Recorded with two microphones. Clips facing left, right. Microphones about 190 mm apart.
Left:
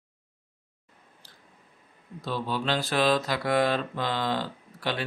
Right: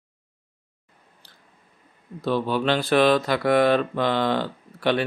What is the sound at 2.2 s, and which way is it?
Speech, 65° right (ahead or behind).